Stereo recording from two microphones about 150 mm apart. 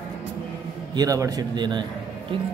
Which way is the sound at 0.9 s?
20° right (ahead or behind).